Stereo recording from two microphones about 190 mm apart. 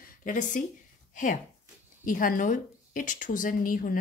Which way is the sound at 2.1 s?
45° left (ahead or behind).